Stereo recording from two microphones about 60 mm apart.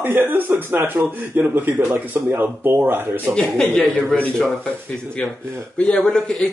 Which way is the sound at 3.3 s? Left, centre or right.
Centre.